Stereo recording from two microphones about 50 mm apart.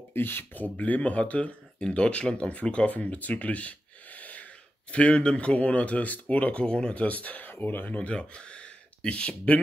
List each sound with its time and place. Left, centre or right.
0.1 s speech: left
0.7 s speech: left